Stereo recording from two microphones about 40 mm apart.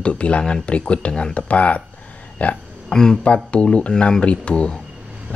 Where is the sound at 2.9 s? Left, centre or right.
Centre.